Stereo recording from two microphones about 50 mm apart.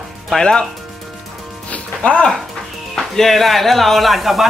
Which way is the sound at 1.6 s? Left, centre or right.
Left.